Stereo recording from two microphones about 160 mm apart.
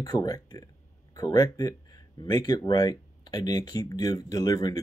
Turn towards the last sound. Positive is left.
turn(degrees=25)  # may be behind; listen again after turning